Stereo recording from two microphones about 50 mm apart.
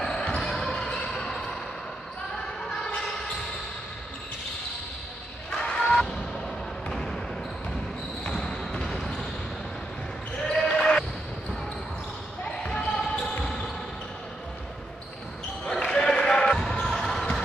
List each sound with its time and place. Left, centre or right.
0.0 s basketball bounce: centre
0.4 s basketball bounce: centre
5.5 s a sound: centre
8.3 s basketball bounce: centre
10.3 s basketball bounce: centre
12.6 s basketball bounce: centre
15.7 s basketball bounce: centre